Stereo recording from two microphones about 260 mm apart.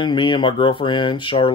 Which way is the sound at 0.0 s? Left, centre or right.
Centre.